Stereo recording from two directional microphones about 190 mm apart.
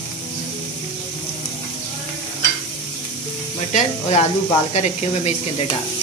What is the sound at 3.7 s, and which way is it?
Speech, 35° left (ahead or behind).